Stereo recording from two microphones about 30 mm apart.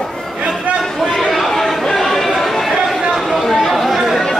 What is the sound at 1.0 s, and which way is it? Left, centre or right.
Chatter, centre.